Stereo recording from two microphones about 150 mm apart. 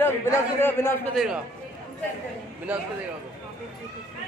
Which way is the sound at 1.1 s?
Centre (ahead or behind).